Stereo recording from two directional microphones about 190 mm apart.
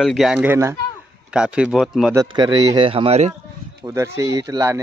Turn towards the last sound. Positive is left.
turn(degrees=-15)  # may be behind; listen again after turning